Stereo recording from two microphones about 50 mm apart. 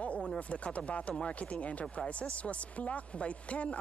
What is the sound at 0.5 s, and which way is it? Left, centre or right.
Speech, left.